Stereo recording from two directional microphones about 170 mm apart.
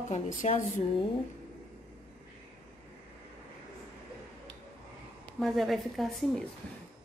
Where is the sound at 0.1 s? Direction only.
45° left (ahead or behind).